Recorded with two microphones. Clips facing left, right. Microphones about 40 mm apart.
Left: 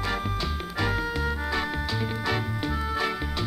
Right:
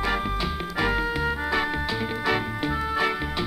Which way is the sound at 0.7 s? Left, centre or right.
Centre.